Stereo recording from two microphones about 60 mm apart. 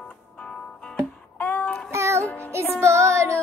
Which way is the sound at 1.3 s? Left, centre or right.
Left.